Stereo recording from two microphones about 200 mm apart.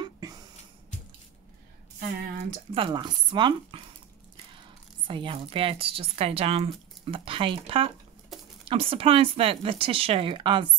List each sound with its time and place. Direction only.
0.0 s a sound: 20° right (ahead or behind)
2.7 s speech: 25° right (ahead or behind)
5.0 s speech: 25° right (ahead or behind)
8.3 s patter: centre (ahead or behind)
8.6 s speech: 30° right (ahead or behind)